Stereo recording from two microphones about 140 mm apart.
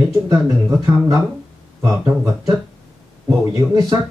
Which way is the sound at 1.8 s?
25° right (ahead or behind).